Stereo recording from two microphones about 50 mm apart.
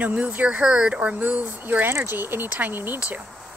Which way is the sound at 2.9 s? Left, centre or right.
Right.